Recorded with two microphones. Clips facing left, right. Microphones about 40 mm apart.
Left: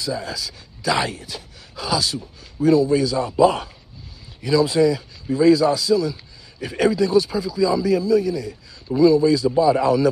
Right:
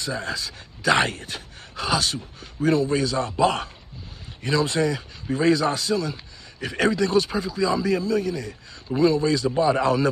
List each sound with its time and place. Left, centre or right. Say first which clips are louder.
0.0 s a man's voice: left 2 dB; right
4.4 s a man's voice: left 5 dB; right
9.5 s a man's voice: left 4 dB; right